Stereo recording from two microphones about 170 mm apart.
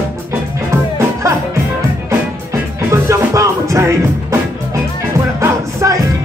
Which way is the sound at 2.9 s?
15° right (ahead or behind).